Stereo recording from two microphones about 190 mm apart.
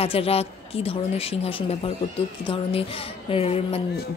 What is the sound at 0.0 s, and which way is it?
Speech, 30° left (ahead or behind).